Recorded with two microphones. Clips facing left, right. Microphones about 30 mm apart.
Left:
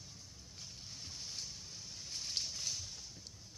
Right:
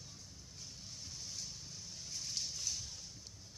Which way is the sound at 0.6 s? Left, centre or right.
Left.